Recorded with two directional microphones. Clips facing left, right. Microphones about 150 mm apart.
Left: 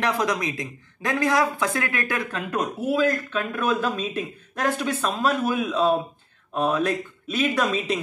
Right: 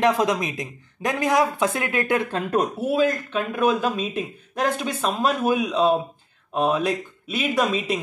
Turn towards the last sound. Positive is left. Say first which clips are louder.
# right 1 dB
turn(degrees=-10)  # may be behind; listen again after turning